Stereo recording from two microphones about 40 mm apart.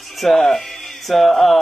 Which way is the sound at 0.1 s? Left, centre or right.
Centre.